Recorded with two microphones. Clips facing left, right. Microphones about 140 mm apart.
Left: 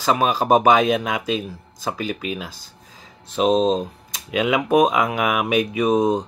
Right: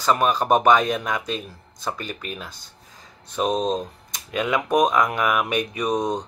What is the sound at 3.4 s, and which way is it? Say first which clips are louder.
Speech: left 5 dB; 25° left (ahead or behind).